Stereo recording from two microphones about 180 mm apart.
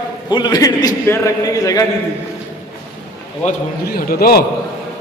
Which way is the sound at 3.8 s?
55° left (ahead or behind).